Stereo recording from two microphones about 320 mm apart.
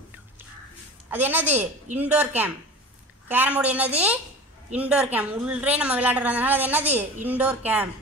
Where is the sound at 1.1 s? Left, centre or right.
Centre.